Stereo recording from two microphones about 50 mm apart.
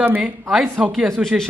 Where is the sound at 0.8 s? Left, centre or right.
Centre.